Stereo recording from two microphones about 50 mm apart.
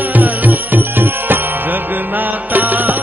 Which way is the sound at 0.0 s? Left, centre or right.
Right.